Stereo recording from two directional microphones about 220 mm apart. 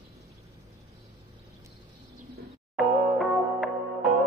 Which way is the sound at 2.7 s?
Centre (ahead or behind).